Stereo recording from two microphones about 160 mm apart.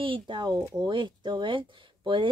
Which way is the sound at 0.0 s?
30° right (ahead or behind).